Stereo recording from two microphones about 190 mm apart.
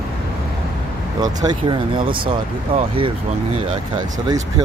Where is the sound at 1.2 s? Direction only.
20° right (ahead or behind).